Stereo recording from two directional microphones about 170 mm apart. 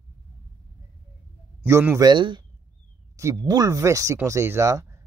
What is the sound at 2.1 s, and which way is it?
Speech, 25° right (ahead or behind).